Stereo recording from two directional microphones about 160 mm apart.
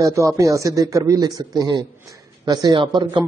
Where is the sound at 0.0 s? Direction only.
20° right (ahead or behind).